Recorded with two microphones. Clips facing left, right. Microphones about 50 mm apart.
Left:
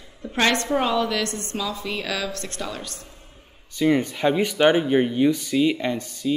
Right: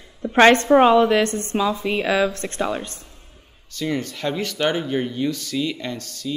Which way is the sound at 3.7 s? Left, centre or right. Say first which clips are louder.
Left 5 dB; centre.